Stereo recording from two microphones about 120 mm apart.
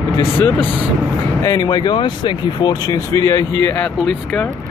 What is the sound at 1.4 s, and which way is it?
Speech, 30° left (ahead or behind).